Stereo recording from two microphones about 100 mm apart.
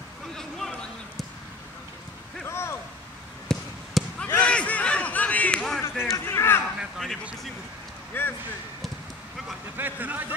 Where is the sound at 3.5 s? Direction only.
5° left (ahead or behind).